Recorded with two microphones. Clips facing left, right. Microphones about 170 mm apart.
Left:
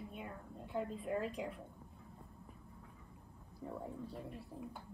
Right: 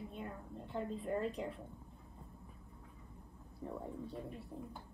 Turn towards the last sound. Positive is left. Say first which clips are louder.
# right 2 dB
turn(degrees=0)  # may be behind; listen again after turning